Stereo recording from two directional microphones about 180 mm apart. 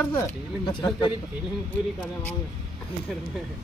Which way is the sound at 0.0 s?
15° left (ahead or behind).